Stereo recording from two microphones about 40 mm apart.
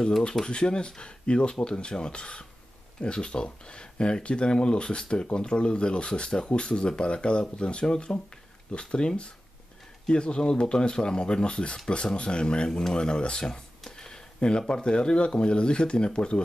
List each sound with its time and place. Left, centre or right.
0.5 s speech: left
13.5 s a sound: centre
14.7 s speech: left